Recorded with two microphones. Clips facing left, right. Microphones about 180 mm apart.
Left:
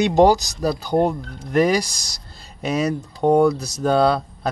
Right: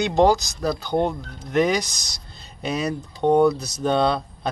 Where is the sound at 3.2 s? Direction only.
10° left (ahead or behind).